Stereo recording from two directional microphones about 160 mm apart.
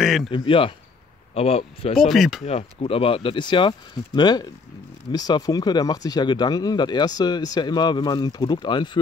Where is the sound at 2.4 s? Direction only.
35° left (ahead or behind).